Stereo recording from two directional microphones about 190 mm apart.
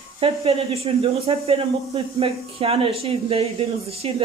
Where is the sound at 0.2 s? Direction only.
30° right (ahead or behind).